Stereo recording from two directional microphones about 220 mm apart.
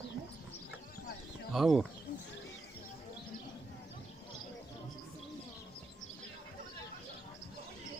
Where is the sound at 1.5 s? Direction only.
Centre (ahead or behind).